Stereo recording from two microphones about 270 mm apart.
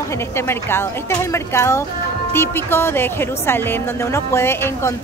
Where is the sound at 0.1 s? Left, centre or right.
Centre.